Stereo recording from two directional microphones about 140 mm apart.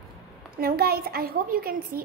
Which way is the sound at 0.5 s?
90° right.